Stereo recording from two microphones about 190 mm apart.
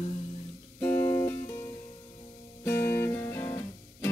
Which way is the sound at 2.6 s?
10° left (ahead or behind).